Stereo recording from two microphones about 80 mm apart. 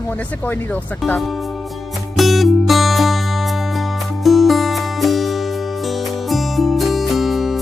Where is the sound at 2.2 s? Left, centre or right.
Centre.